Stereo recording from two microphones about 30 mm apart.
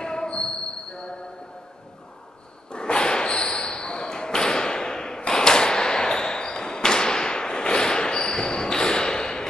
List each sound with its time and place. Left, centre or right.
0.0 s basketball bounce: left
2.7 s a sound: left
5.3 s basketball bounce: left